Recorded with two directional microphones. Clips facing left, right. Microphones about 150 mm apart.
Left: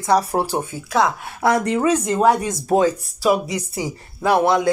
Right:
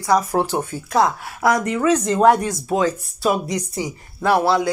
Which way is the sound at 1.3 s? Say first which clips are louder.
Left 1 dB; 30° left (ahead or behind).